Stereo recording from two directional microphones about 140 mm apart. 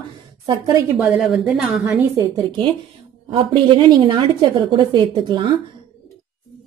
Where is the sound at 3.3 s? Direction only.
40° right (ahead or behind).